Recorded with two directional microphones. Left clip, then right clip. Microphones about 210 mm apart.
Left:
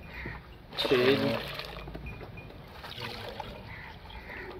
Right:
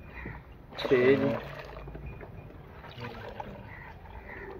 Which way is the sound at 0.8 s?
5° left (ahead or behind).